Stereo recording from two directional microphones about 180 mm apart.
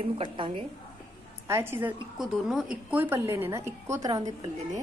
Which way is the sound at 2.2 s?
Centre (ahead or behind).